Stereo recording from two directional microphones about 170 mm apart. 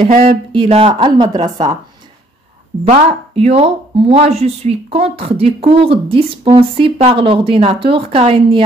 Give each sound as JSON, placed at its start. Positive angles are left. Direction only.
{"t": 0.0, "sound": "a woman's voice", "side_deg": -40}
{"t": 2.9, "sound": "speech", "side_deg": -40}